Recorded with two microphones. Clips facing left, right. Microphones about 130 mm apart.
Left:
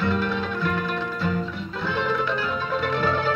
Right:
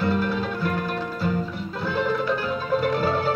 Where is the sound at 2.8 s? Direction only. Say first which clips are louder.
Even; 40° right (ahead or behind).